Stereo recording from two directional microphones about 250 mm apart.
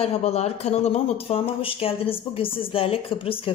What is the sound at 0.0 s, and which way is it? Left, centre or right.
Speech, left.